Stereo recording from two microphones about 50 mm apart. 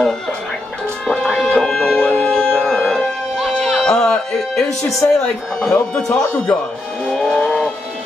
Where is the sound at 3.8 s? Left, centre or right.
Centre.